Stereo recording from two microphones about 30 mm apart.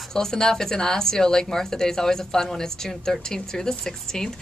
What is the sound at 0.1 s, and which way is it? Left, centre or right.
A woman's voice, centre.